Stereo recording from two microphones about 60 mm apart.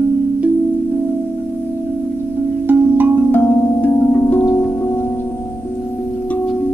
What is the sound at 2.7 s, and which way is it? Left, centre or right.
Music, right.